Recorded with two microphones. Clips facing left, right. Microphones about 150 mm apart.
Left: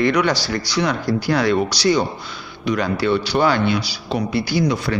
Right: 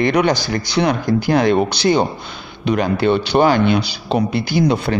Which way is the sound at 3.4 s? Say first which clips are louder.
Right 5 dB; 20° right (ahead or behind).